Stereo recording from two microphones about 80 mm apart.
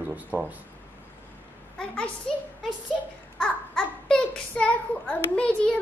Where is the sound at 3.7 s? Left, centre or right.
Centre.